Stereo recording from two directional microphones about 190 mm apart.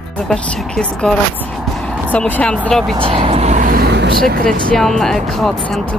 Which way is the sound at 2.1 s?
10° left (ahead or behind).